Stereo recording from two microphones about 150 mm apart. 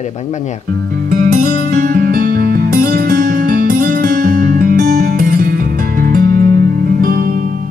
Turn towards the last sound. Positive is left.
turn(degrees=-70)  # may be behind; listen again after turning